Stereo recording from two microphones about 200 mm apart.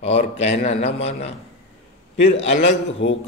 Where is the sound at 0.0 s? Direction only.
30° left (ahead or behind).